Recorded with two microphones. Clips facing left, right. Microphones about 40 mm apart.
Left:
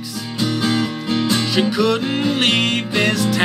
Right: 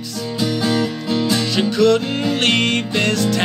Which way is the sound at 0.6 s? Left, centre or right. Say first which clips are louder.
Right 1 dB; centre.